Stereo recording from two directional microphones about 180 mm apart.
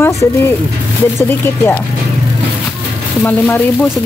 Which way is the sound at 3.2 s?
10° left (ahead or behind).